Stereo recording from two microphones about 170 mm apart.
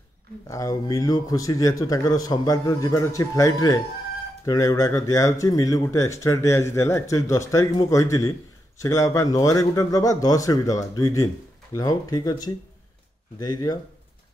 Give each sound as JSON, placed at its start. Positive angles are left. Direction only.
{"t": 0.5, "sound": "speech", "side_deg": 20}